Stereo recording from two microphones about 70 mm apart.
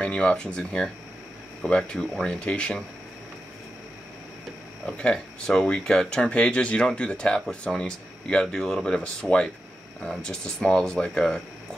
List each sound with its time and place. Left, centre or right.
0.0 s speech: centre
4.8 s speech: centre